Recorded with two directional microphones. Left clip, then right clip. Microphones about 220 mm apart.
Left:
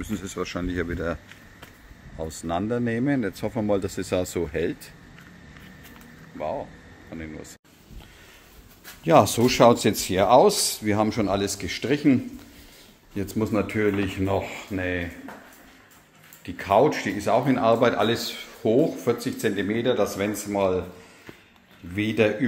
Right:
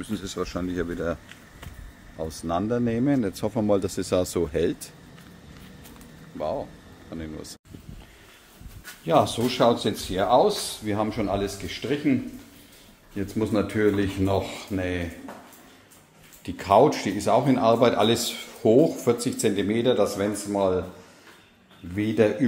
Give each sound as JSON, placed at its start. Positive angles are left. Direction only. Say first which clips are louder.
{"t": 0.1, "sound": "speech", "louder": "even", "side_deg": 5}
{"t": 6.3, "sound": "a sound", "louder": "right 1 dB", "side_deg": -10}
{"t": 9.0, "sound": "speech", "louder": "left 4 dB", "side_deg": 30}
{"t": 13.4, "sound": "speech", "louder": "right 1 dB", "side_deg": 0}
{"t": 14.2, "sound": "speech", "louder": "right 1 dB", "side_deg": -15}
{"t": 16.4, "sound": "speech", "louder": "right 1 dB", "side_deg": -15}
{"t": 20.2, "sound": "speech", "louder": "even", "side_deg": 0}
{"t": 21.9, "sound": "speech", "louder": "even", "side_deg": -5}